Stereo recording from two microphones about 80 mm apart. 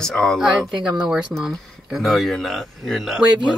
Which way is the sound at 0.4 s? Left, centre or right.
Centre.